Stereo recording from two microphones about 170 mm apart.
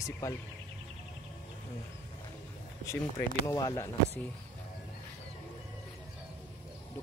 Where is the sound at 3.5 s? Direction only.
20° left (ahead or behind).